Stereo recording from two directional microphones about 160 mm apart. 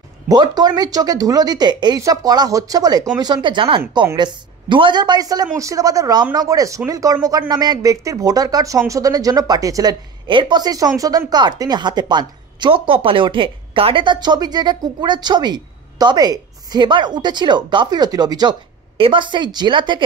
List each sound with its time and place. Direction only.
0.3 s speech: 25° right (ahead or behind)